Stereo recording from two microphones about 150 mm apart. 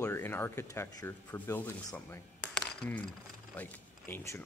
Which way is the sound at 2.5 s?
5° left (ahead or behind).